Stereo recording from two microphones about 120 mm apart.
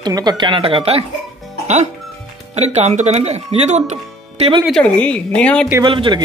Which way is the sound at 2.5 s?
65° right (ahead or behind).